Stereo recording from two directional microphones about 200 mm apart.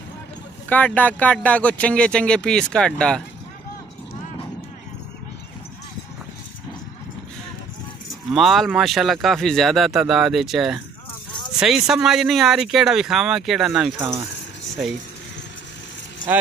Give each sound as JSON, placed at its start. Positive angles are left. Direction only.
{"t": 0.7, "sound": "speech", "side_deg": 10}
{"t": 8.3, "sound": "speech", "side_deg": 0}
{"t": 13.9, "sound": "speech", "side_deg": -15}
{"t": 14.8, "sound": "speech", "side_deg": -5}